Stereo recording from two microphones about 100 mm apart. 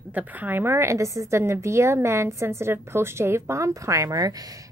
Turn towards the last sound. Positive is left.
turn(degrees=-35)  # may be behind; listen again after turning